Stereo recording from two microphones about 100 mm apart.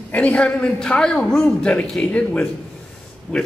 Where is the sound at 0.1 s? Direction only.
10° left (ahead or behind).